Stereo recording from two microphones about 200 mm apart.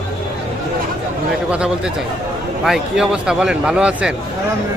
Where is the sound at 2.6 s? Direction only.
Centre (ahead or behind).